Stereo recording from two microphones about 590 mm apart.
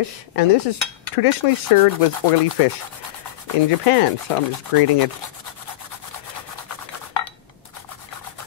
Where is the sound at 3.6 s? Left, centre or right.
Left.